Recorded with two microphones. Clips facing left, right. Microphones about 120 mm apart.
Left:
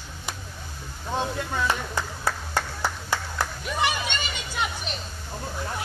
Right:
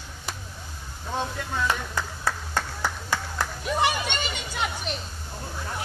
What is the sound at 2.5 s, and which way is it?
Clapping, 10° left (ahead or behind).